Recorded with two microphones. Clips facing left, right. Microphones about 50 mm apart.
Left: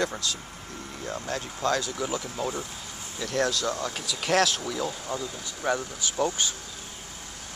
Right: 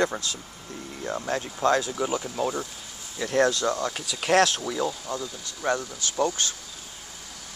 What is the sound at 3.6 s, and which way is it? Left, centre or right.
Speech, centre.